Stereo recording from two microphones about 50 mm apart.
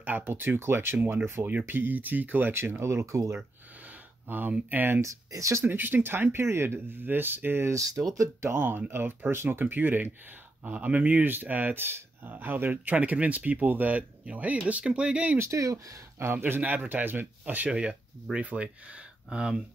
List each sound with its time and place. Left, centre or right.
0.0 s speech: right
0.6 s speech: right
2.5 s speech: right
4.3 s speech: right
5.0 s speech: right
5.6 s speech: right
7.6 s speech: right
8.2 s speech: right
8.6 s speech: right
9.3 s speech: right
15.3 s speech: right
16.2 s speech: right
17.6 s speech: right
19.3 s speech: centre